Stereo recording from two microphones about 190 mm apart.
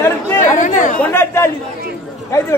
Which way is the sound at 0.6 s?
40° left (ahead or behind).